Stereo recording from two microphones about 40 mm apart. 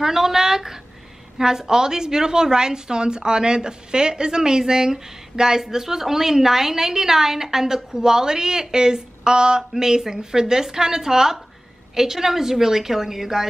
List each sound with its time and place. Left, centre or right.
0.0 s a woman's voice: centre